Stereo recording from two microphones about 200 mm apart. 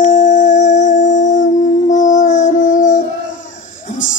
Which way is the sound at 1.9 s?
40° left (ahead or behind).